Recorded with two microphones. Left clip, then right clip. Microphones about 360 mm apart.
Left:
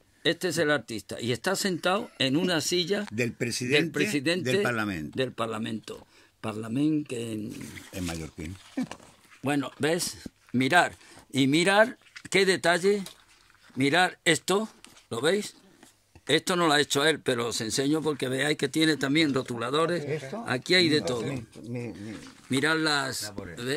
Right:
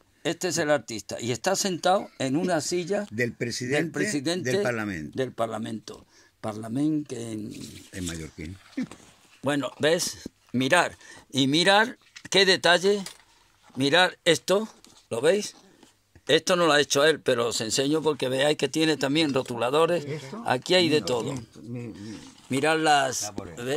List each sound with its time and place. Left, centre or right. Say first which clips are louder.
0.2 s speech: left 1 dB; centre
2.4 s speech: even; right
3.2 s speech: right 1 dB; centre
7.9 s speech: even; left
9.4 s speech: right 3 dB; centre
21.7 s speech: left 2 dB; left
22.5 s speech: right 4 dB; centre